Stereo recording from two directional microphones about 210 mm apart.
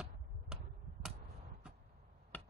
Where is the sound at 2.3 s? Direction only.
10° left (ahead or behind).